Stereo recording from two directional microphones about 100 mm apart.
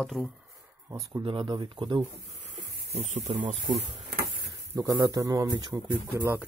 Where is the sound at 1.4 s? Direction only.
45° right (ahead or behind).